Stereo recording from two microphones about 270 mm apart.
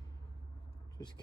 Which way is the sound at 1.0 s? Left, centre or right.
Centre.